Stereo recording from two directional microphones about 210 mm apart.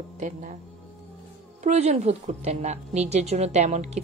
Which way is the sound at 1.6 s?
35° right (ahead or behind).